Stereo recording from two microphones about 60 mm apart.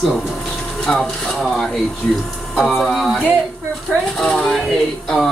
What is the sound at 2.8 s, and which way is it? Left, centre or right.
Speech, centre.